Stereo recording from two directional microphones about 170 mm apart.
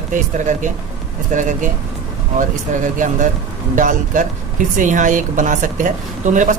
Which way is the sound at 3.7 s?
50° right (ahead or behind).